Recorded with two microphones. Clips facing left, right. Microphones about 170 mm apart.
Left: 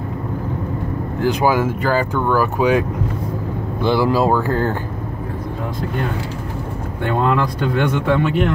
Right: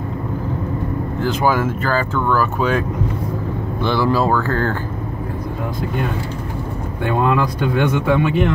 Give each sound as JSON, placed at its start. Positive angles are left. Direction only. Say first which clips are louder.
{"t": 1.2, "sound": "speech", "louder": "left 2 dB", "side_deg": 15}
{"t": 3.8, "sound": "speech", "louder": "left 2 dB", "side_deg": 10}
{"t": 7.0, "sound": "speech", "louder": "even", "side_deg": -10}